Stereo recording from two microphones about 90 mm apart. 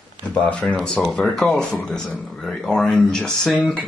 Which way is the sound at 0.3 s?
15° left (ahead or behind).